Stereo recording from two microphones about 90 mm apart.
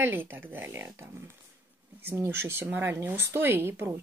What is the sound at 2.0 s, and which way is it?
Speech, 25° right (ahead or behind).